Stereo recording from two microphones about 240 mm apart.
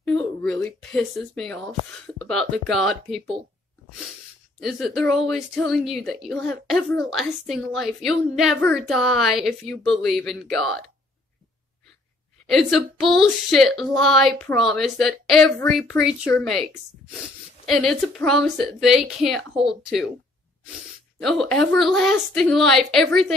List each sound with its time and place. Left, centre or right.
0.0 s a woman's voice: centre
4.6 s a woman's voice: centre
12.4 s a woman's voice: centre
17.6 s a woman's voice: centre
21.2 s a woman's voice: centre